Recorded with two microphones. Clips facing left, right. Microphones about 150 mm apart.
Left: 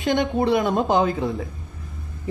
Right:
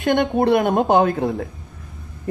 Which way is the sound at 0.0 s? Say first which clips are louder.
Right 3 dB; 55° right (ahead or behind).